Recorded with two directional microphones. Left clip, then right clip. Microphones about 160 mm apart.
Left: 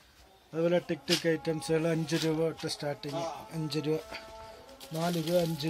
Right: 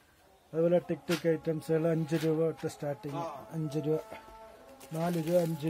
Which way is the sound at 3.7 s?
50° right (ahead or behind).